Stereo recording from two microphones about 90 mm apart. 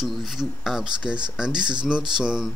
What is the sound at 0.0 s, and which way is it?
Speech, centre (ahead or behind).